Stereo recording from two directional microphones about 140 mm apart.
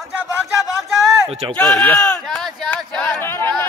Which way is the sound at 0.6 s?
Centre (ahead or behind).